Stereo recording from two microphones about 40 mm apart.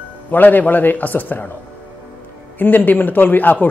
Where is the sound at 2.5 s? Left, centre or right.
Left.